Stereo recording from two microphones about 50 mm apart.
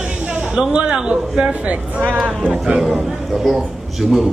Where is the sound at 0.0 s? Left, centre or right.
Right.